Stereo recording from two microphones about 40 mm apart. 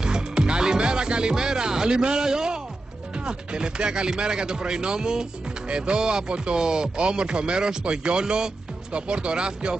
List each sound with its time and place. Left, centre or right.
0.0 s music: right
3.3 s speech: right